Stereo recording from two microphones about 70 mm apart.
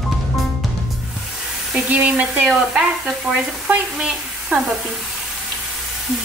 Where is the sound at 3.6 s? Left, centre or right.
Centre.